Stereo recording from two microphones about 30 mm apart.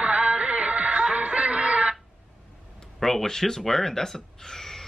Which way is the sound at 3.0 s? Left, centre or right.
Centre.